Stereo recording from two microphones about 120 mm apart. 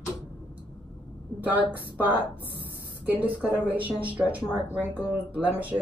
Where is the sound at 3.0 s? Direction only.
15° right (ahead or behind).